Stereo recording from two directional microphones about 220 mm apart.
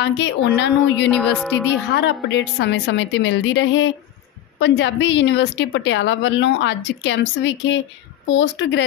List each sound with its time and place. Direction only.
0.0 s a woman's voice: 50° left (ahead or behind)
1.0 s a sound: 5° left (ahead or behind)
2.0 s a woman's voice: 50° left (ahead or behind)